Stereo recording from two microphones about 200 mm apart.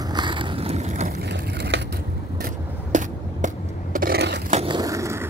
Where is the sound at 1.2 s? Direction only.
55° right (ahead or behind).